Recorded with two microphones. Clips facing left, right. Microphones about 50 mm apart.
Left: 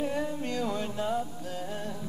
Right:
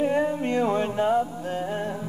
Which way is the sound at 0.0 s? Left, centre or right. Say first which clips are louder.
Right 8 dB; right.